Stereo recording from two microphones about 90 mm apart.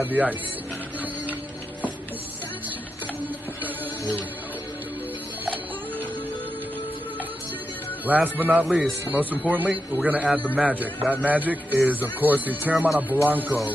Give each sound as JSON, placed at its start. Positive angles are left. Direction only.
{"t": 0.0, "sound": "speech", "side_deg": -20}
{"t": 8.1, "sound": "a man's voice", "side_deg": -20}